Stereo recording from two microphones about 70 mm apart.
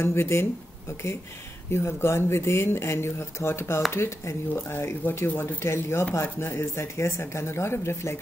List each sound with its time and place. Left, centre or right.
0.0 s speech: left
1.7 s speech: left